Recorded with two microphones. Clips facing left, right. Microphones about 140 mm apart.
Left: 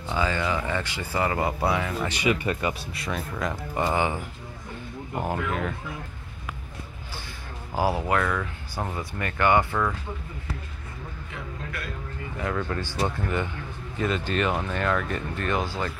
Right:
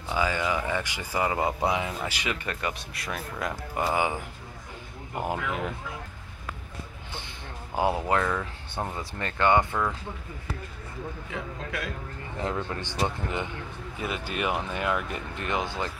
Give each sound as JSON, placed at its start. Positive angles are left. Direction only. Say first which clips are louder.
{"t": 0.1, "sound": "speech", "louder": "left 1 dB", "side_deg": -10}
{"t": 2.2, "sound": "speech", "louder": "left 8 dB", "side_deg": 10}
{"t": 5.2, "sound": "speech", "louder": "left 1 dB", "side_deg": -15}
{"t": 7.7, "sound": "speech", "louder": "left 1 dB", "side_deg": -20}
{"t": 8.7, "sound": "speech", "louder": "left 1 dB", "side_deg": 5}
{"t": 9.2, "sound": "speech", "louder": "left 1 dB", "side_deg": -20}
{"t": 12.4, "sound": "speech", "louder": "left 2 dB", "side_deg": -25}